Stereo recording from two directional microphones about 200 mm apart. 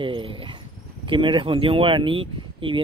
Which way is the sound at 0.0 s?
25° right (ahead or behind).